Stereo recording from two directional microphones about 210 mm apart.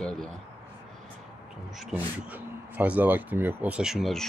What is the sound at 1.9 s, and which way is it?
Speech, 10° right (ahead or behind).